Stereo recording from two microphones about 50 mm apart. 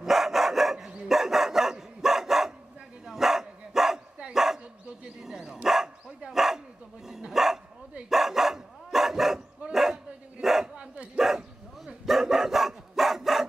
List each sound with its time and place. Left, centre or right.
0.0 s dog: centre